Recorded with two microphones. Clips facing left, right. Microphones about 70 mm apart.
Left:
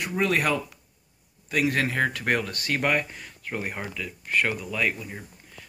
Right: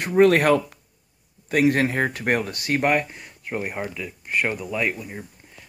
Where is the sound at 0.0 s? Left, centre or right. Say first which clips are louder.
Right 8 dB; right.